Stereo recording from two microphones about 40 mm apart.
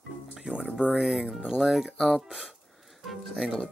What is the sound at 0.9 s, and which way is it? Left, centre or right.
Speech, centre.